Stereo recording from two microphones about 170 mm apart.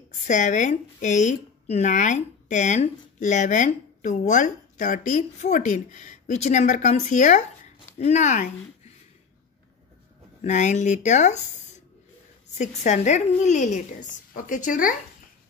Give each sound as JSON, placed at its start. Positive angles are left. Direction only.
{"t": 0.3, "sound": "speech", "side_deg": 45}
{"t": 10.4, "sound": "speech", "side_deg": 45}
{"t": 12.5, "sound": "speech", "side_deg": 45}